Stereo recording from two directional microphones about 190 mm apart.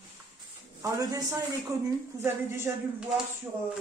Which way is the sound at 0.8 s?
20° right (ahead or behind).